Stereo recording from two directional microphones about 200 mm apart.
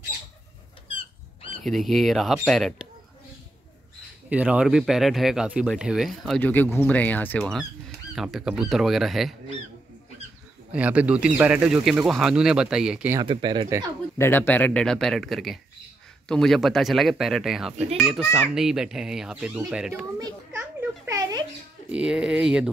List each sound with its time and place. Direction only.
1.6 s speech: centre (ahead or behind)
4.3 s speech: 5° right (ahead or behind)
10.7 s speech: 5° right (ahead or behind)
13.2 s speech: 25° right (ahead or behind)
14.1 s speech: 10° left (ahead or behind); by 20.1 s 5° right (ahead or behind)
20.5 s a sound: 10° right (ahead or behind)
21.8 s speech: 5° right (ahead or behind)